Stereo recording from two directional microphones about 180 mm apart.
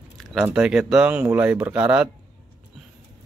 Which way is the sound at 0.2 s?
Centre (ahead or behind).